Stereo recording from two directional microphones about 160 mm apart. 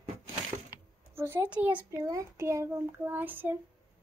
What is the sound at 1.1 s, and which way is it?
A child's voice, 15° right (ahead or behind).